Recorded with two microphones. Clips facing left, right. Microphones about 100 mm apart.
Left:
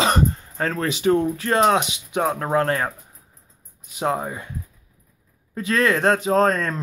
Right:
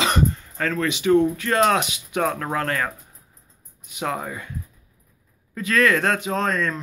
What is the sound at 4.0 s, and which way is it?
Speech, 25° left (ahead or behind).